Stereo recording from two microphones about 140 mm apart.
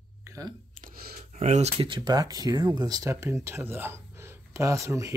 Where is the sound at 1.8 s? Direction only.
30° right (ahead or behind).